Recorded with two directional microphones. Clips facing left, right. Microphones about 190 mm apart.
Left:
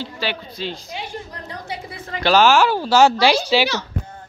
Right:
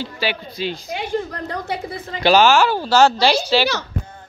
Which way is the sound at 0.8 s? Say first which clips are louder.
Right 8 dB; 60° right (ahead or behind).